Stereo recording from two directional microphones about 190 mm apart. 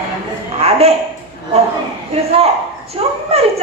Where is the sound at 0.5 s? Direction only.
35° right (ahead or behind).